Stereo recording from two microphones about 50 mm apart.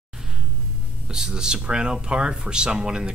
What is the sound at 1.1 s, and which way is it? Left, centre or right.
Speech, centre.